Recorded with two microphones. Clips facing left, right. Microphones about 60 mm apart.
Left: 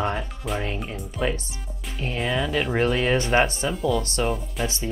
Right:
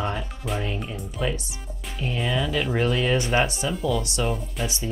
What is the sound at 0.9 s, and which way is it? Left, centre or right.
Speech, centre.